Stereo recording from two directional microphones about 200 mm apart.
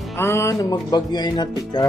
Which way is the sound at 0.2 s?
15° left (ahead or behind).